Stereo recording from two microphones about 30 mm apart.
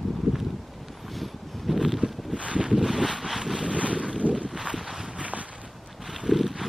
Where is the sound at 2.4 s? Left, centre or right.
Right.